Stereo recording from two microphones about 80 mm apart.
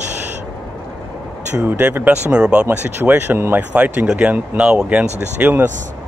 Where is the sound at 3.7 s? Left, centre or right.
Centre.